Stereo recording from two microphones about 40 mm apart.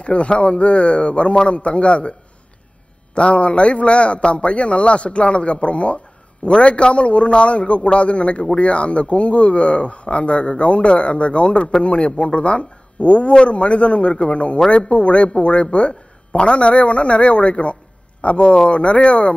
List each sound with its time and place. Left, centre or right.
0.0 s speech: left
3.2 s speech: left